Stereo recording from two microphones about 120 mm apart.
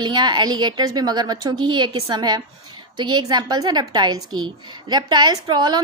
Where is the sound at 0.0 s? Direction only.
35° right (ahead or behind).